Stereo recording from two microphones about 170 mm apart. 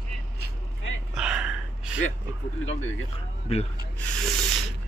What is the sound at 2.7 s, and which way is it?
Speech, 40° left (ahead or behind).